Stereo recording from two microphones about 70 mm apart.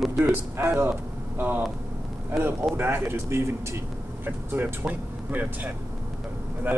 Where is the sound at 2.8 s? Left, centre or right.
Right.